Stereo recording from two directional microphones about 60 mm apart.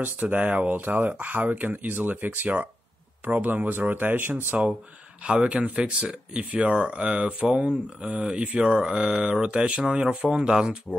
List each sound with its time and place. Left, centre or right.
0.0 s speech: right
5.2 s speech: centre